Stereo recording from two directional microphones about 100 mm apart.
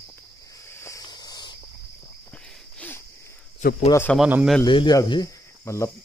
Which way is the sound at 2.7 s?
15° left (ahead or behind).